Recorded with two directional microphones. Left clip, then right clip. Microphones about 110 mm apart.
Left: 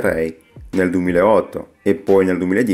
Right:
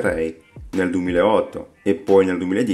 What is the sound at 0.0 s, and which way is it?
Speech, 40° left (ahead or behind).